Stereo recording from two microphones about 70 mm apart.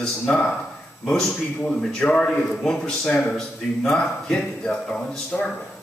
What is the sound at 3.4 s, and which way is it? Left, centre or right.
Speech, centre.